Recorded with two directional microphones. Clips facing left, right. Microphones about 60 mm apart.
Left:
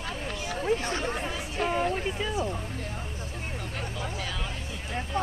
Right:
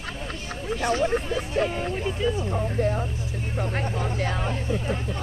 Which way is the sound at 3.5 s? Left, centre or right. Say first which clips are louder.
Right 10 dB; right.